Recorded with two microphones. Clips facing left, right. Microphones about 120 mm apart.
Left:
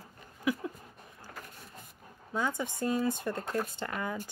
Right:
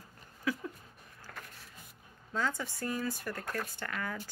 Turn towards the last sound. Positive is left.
turn(degrees=20)  # may be behind; listen again after turning